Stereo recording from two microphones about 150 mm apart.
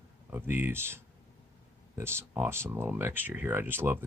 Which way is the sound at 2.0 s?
15° right (ahead or behind).